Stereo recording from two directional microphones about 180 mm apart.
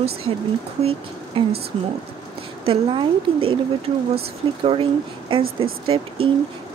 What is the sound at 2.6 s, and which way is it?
Speech, 30° right (ahead or behind).